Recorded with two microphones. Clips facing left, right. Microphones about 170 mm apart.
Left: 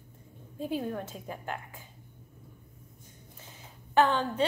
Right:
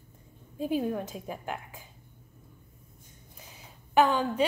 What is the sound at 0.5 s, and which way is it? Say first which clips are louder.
A woman's voice: right 4 dB; 15° right (ahead or behind).